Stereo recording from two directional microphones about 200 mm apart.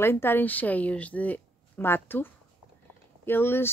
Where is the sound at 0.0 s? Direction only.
10° left (ahead or behind).